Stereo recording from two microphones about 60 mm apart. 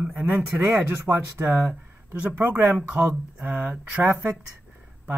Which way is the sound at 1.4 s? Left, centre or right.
Right.